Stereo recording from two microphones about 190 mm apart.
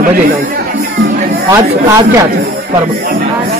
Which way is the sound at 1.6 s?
20° right (ahead or behind).